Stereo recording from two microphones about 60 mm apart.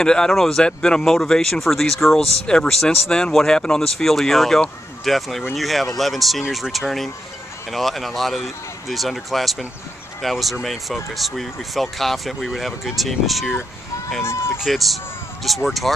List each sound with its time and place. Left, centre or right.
0.0 s speech: centre
2.4 s speech: centre
14.2 s speech: left
14.6 s speech: centre